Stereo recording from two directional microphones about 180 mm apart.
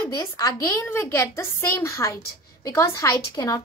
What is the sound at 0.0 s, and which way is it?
A woman's voice, 20° left (ahead or behind).